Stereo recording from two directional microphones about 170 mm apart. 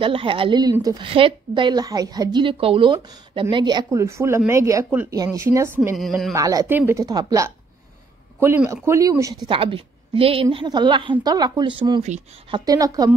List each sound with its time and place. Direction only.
0.0 s a woman's voice: 30° right (ahead or behind)
5.9 s speech: centre (ahead or behind)
6.3 s a woman's voice: 20° right (ahead or behind)
9.5 s a woman's voice: 30° right (ahead or behind)